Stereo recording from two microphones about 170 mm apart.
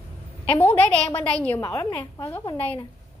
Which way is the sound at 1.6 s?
20° left (ahead or behind).